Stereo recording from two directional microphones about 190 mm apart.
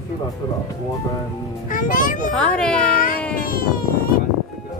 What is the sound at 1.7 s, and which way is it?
Speech, 45° left (ahead or behind).